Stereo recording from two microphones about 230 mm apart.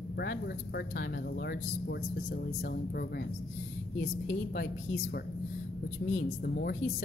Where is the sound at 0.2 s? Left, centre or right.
Left.